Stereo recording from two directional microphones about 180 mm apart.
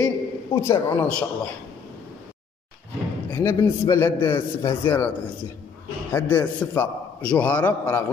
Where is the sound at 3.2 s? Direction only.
15° left (ahead or behind).